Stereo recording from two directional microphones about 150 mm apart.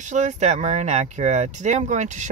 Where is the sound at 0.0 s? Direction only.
55° right (ahead or behind).